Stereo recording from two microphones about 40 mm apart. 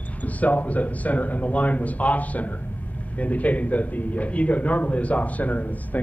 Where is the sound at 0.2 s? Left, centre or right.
Left.